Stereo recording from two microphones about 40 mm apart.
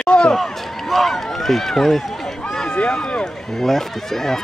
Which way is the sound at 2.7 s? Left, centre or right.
Left.